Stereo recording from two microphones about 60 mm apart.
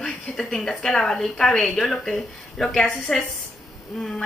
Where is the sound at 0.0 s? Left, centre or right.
Centre.